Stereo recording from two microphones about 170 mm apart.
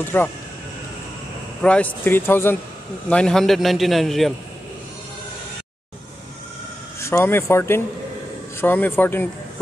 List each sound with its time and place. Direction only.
0.0 s speech: 10° left (ahead or behind)
1.6 s a man's voice: 10° left (ahead or behind)
7.0 s speech: 15° left (ahead or behind)